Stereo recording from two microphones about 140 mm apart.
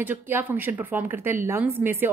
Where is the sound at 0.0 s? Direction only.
15° right (ahead or behind).